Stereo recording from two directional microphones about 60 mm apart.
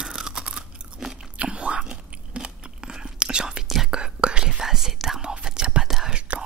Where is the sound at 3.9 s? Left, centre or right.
Centre.